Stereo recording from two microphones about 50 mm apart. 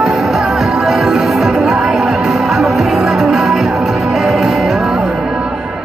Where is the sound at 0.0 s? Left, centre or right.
Centre.